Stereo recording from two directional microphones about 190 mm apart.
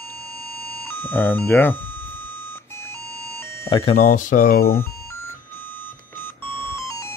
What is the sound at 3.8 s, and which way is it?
Speech, 35° left (ahead or behind).